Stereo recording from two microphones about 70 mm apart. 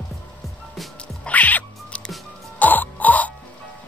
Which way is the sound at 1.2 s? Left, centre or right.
Left.